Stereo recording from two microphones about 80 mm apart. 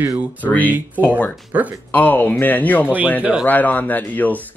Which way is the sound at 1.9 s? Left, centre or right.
Left.